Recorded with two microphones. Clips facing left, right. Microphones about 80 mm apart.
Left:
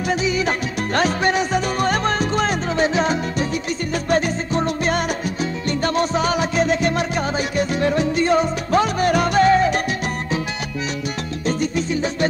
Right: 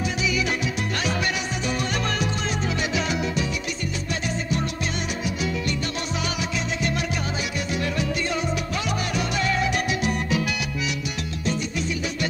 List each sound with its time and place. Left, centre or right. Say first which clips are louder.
0.9 s music: left 11 dB; left
11.4 s music: left 6 dB; left